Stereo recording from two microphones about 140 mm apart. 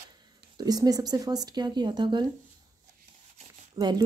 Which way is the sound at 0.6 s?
25° right (ahead or behind).